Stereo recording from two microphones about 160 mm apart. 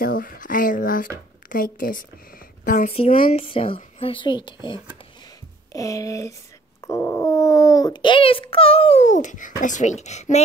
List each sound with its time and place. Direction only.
0.0 s speech: 65° left (ahead or behind)
3.2 s a child's voice: 35° left (ahead or behind)